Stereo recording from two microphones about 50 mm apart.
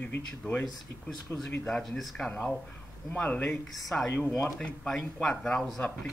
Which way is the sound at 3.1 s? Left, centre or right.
Left.